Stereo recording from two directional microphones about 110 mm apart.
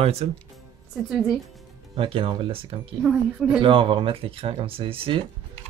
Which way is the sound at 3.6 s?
50° right (ahead or behind).